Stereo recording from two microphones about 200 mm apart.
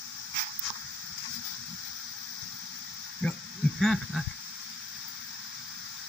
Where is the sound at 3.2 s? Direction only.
5° left (ahead or behind).